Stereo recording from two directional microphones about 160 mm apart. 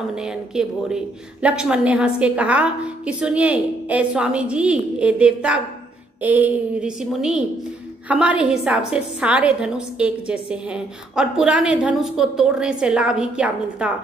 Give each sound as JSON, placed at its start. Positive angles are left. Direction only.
{"t": 0.1, "sound": "a woman's voice", "side_deg": -5}